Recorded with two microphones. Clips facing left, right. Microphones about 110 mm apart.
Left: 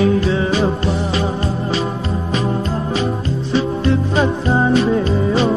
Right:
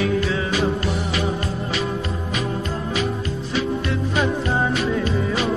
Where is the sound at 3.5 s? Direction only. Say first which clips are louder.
Left 7 dB; 30° left (ahead or behind).